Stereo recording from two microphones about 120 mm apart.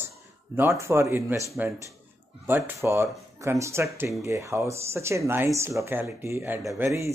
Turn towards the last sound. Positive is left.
turn(degrees=-25)  # may be behind; listen again after turning